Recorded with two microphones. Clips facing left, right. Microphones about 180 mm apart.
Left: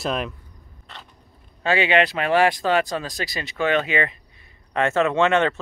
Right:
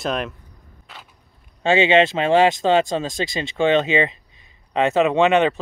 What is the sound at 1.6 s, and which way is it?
Speech, 25° right (ahead or behind).